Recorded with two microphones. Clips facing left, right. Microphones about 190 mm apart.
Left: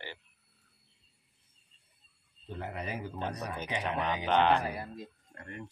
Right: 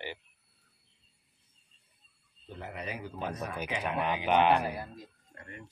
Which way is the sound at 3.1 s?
5° right (ahead or behind).